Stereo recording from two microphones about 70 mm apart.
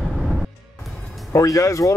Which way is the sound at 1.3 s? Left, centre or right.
Left.